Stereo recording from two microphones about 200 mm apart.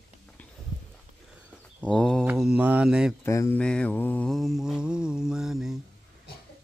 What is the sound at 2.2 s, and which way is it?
Mantra, 5° right (ahead or behind).